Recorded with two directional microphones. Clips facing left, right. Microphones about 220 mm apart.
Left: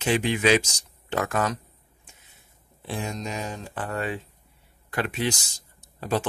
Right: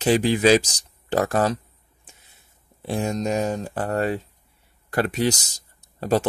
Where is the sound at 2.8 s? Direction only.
40° right (ahead or behind).